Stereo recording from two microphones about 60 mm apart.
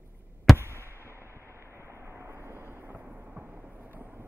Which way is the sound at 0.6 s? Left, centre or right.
Right.